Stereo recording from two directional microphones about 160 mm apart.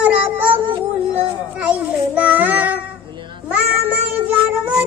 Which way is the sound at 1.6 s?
10° right (ahead or behind).